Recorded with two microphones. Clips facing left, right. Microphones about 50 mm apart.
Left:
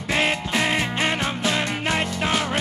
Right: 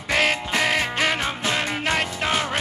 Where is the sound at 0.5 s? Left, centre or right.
Centre.